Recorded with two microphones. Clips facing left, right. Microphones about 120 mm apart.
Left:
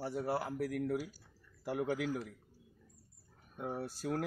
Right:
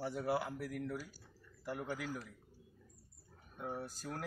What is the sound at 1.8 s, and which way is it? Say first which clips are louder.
Speech: left 8 dB; 90° left.